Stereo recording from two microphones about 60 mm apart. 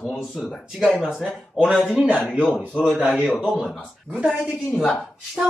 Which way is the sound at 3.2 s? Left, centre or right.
Centre.